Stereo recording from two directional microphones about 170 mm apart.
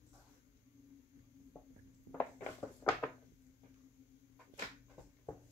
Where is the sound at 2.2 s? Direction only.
10° left (ahead or behind).